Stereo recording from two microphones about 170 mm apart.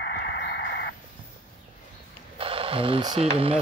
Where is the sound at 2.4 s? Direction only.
35° right (ahead or behind).